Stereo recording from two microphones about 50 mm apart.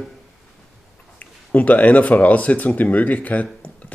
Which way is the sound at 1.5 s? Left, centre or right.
Left.